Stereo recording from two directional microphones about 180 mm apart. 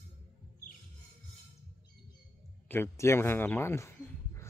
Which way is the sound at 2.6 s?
10° left (ahead or behind).